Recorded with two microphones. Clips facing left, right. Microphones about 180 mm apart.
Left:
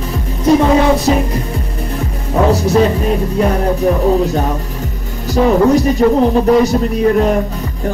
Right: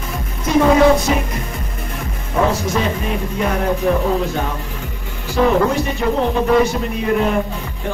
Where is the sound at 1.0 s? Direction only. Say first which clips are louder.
Left 6 dB; 35° left (ahead or behind).